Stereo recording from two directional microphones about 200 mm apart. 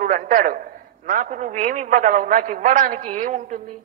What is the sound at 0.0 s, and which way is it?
A man's voice, 40° right (ahead or behind).